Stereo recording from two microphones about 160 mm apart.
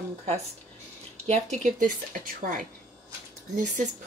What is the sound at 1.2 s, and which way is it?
Speech, 45° right (ahead or behind).